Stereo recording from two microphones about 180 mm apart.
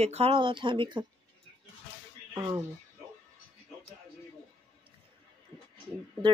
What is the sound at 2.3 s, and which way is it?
Speech, 20° right (ahead or behind).